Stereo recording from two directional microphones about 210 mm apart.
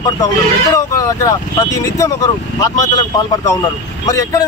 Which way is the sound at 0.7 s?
15° left (ahead or behind).